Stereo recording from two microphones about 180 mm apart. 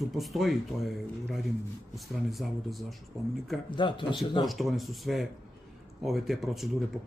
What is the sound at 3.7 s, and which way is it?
Speech, 25° left (ahead or behind).